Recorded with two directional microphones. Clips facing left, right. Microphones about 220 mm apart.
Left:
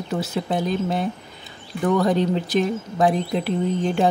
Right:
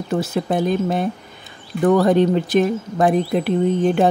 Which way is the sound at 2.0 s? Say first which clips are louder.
Right 5 dB; 55° right (ahead or behind).